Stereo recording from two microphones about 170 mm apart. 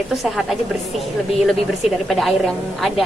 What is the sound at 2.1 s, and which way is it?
Speech, centre (ahead or behind).